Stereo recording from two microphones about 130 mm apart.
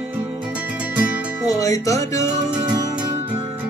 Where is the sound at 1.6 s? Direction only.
25° left (ahead or behind).